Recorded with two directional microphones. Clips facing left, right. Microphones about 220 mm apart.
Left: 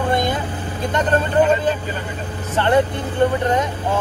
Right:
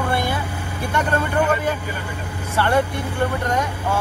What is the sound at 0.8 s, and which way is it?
Speech, 10° right (ahead or behind).